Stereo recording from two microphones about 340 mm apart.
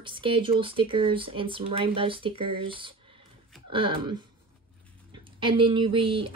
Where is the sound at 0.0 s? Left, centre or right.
Centre.